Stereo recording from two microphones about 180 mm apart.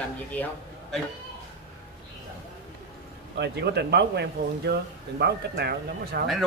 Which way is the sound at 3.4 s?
70° right (ahead or behind).